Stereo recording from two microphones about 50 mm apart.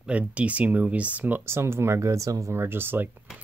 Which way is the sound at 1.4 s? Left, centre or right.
Right.